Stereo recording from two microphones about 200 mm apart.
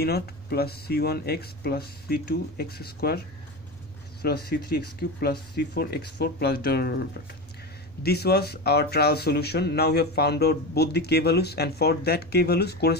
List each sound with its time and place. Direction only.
0.0 s speech: 50° left (ahead or behind)
4.2 s speech: 50° left (ahead or behind)